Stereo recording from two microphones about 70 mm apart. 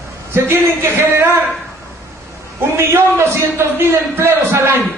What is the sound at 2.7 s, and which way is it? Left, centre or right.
Speech, right.